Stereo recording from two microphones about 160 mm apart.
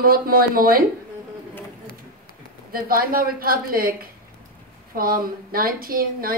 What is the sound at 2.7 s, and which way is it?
A woman's voice, 65° right (ahead or behind).